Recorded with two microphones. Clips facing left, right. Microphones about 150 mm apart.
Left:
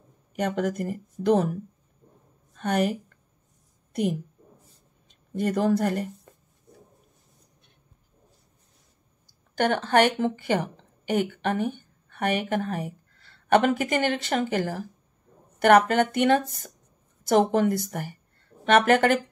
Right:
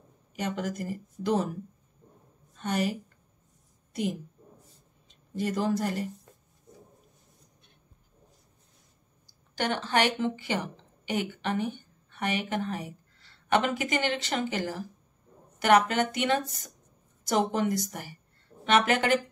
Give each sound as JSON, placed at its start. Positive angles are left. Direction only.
{"t": 0.4, "sound": "speech", "side_deg": 55}
{"t": 2.5, "sound": "a woman's voice", "side_deg": 55}
{"t": 9.6, "sound": "a woman's voice", "side_deg": 50}